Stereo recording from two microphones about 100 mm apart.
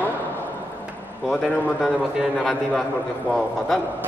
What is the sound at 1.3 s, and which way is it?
A man's voice, 5° left (ahead or behind).